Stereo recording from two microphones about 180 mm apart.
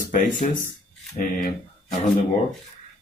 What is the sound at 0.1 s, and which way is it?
Speech, 45° left (ahead or behind).